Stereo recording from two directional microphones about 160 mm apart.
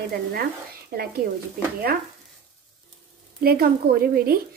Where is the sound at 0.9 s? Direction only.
75° right (ahead or behind).